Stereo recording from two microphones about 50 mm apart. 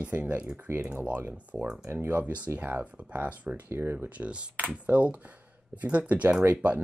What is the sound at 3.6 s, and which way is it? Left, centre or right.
Speech, right.